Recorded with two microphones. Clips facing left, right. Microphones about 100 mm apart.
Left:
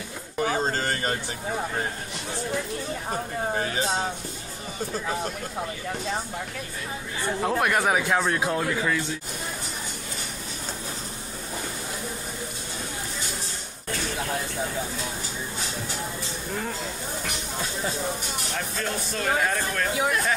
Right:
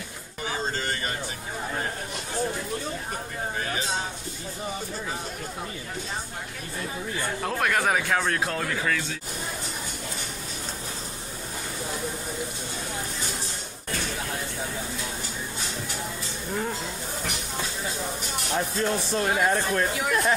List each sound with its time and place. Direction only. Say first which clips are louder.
0.4 s a sound: left 5 dB; 50° left (ahead or behind)
7.4 s speech: left 2 dB; 15° left (ahead or behind)
18.8 s speech: right 3 dB; 25° right (ahead or behind)